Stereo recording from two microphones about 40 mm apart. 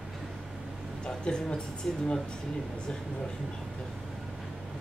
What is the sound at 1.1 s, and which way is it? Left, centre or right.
Speech, left.